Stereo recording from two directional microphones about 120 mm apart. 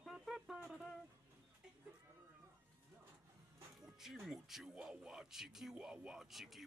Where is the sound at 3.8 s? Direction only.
5° right (ahead or behind).